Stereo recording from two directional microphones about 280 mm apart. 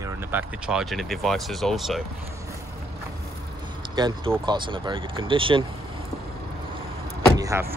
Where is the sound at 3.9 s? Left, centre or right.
Centre.